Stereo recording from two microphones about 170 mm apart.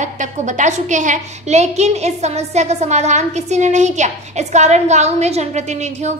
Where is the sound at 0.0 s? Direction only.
45° right (ahead or behind).